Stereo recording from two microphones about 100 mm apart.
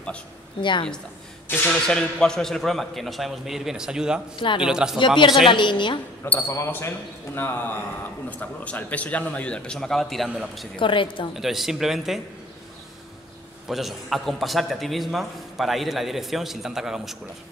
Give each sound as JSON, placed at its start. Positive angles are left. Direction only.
{"t": 0.6, "sound": "a woman's voice", "side_deg": 55}
{"t": 1.7, "sound": "a man's voice", "side_deg": 5}
{"t": 4.9, "sound": "speech", "side_deg": 55}
{"t": 6.2, "sound": "a man's voice", "side_deg": 15}
{"t": 6.5, "sound": "a man's voice", "side_deg": 25}
{"t": 10.8, "sound": "a woman's voice", "side_deg": 55}
{"t": 11.3, "sound": "a man's voice", "side_deg": -5}
{"t": 13.7, "sound": "a man's voice", "side_deg": 0}